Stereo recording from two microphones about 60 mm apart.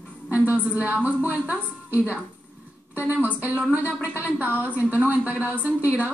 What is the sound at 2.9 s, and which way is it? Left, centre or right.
A woman's voice, right.